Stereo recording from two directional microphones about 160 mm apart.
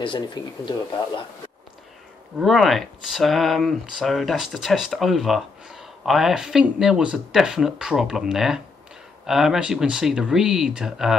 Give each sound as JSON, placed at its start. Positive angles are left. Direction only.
{"t": 0.0, "sound": "speech", "side_deg": 30}
{"t": 2.3, "sound": "speech", "side_deg": 0}